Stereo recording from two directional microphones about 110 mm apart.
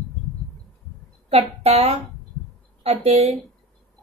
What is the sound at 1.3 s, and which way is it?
Speech, 70° right (ahead or behind).